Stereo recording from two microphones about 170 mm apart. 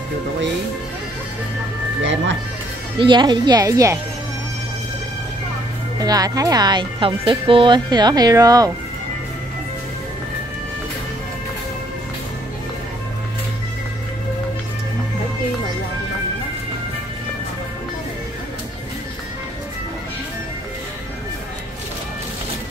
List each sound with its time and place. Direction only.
3.0 s speech: 25° right (ahead or behind)
5.9 s speech: 20° right (ahead or behind)